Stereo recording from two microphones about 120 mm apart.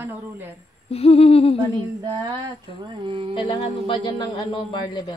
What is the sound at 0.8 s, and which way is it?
Humming, 55° left (ahead or behind).